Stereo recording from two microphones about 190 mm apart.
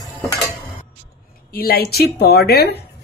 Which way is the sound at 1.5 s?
55° left (ahead or behind).